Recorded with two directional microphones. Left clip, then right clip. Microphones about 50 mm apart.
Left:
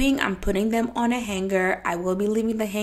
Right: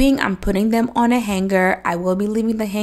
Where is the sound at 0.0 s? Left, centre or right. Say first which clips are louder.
Right 5 dB; right.